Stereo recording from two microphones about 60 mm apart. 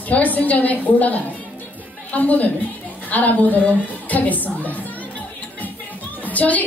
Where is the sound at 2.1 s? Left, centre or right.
Left.